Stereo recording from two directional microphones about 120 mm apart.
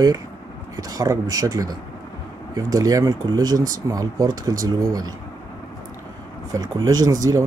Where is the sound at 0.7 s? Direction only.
30° right (ahead or behind).